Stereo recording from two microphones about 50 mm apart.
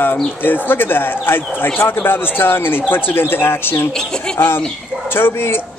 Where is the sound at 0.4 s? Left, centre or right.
Left.